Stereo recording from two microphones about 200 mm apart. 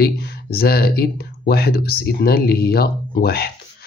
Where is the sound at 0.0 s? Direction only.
50° left (ahead or behind).